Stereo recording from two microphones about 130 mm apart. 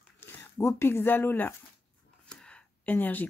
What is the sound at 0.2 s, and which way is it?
Speech, 20° left (ahead or behind).